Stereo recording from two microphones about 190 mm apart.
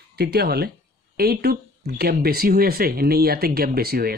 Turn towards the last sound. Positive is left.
turn(degrees=-55)  # may be behind; listen again after turning